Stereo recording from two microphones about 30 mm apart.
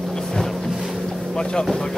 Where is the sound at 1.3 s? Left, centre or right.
Left.